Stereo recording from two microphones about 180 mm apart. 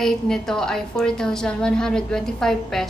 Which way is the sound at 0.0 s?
5° left (ahead or behind).